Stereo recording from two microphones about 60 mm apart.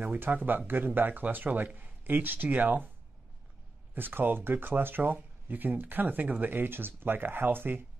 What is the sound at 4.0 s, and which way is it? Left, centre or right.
Speech, right.